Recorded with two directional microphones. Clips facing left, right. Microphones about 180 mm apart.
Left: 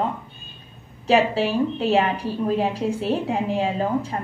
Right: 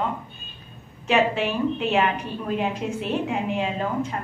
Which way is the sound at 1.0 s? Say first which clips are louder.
Left 3 dB; 35° left (ahead or behind).